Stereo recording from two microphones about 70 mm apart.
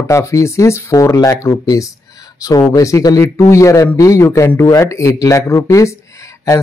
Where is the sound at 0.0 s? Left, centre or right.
Left.